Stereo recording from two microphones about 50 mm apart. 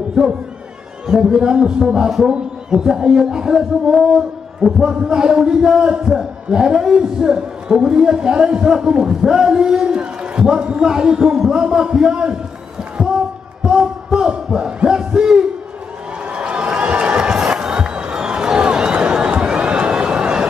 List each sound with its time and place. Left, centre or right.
0.2 s a man's voice: centre
12.9 s a sound: centre
16.3 s crowd: right